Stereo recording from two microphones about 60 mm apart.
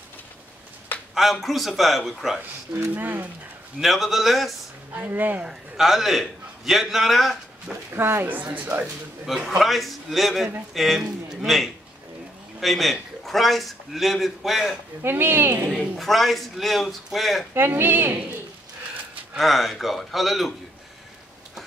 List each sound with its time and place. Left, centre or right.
1.1 s a man's voice: centre
2.7 s a woman's voice: right
3.8 s a man's voice: centre
4.9 s speech: right
5.4 s a man's voice: centre
7.9 s a woman's voice: right
8.8 s a man's voice: centre
15.0 s a woman's voice: right
15.7 s a man's voice: centre
17.6 s a woman's voice: right
19.3 s a man's voice: centre